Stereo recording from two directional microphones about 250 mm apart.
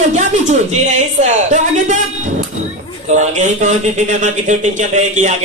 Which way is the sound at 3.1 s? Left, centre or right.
Right.